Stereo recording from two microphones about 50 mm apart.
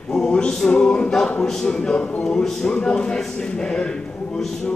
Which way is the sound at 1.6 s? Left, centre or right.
Centre.